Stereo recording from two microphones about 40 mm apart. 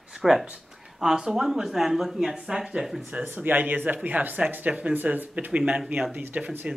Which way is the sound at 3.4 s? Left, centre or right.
Right.